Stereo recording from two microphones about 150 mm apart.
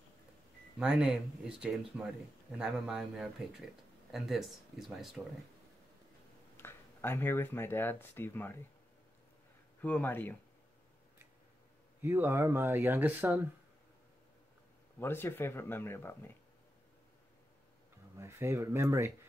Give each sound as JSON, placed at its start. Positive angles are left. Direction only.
{"t": 0.7, "sound": "speech", "side_deg": -5}
{"t": 6.5, "sound": "speech", "side_deg": 15}
{"t": 9.8, "sound": "speech", "side_deg": 10}
{"t": 12.0, "sound": "speech", "side_deg": -15}
{"t": 15.0, "sound": "speech", "side_deg": 15}
{"t": 18.1, "sound": "speech", "side_deg": -20}